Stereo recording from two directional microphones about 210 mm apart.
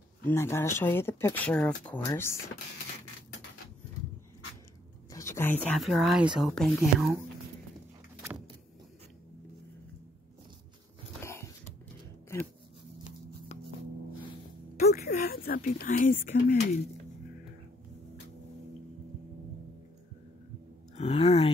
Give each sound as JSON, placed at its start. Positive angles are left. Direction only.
{"t": 0.2, "sound": "speech", "side_deg": 10}
{"t": 5.1, "sound": "speech", "side_deg": 15}
{"t": 13.5, "sound": "music", "side_deg": 30}
{"t": 14.9, "sound": "a sound", "side_deg": 45}
{"t": 20.9, "sound": "speech", "side_deg": 30}